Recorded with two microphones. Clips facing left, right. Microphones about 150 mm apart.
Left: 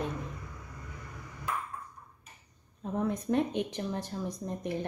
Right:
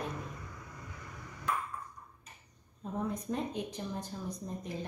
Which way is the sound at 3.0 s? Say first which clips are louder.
Left 7 dB; 75° left (ahead or behind).